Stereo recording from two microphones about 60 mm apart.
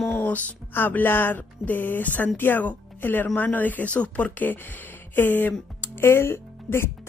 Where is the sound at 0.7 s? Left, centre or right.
Left.